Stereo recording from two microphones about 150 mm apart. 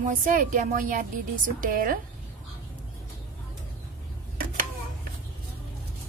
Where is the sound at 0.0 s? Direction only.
60° right (ahead or behind).